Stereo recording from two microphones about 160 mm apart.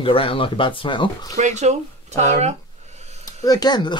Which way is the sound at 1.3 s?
45° right (ahead or behind).